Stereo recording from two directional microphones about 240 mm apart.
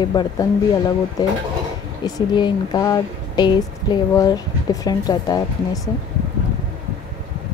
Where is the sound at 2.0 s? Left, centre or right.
Centre.